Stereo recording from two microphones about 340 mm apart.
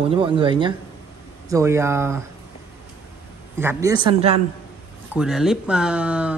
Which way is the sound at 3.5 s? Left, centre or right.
Centre.